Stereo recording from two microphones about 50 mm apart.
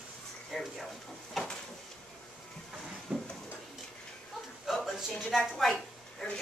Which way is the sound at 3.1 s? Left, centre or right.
Centre.